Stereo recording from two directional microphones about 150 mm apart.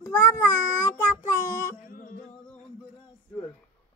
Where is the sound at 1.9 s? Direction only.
65° left (ahead or behind).